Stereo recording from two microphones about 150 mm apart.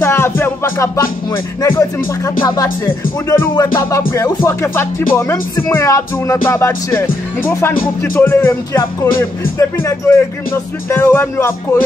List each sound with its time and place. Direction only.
0.0 s music: 15° left (ahead or behind)
2.2 s speech: 25° left (ahead or behind)
7.8 s music: 10° left (ahead or behind)